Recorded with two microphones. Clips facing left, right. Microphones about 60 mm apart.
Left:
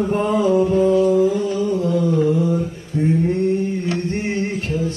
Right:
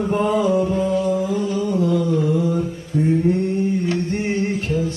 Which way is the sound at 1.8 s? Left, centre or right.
Left.